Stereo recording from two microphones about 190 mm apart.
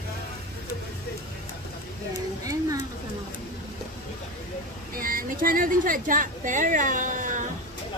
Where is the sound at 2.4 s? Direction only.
15° right (ahead or behind).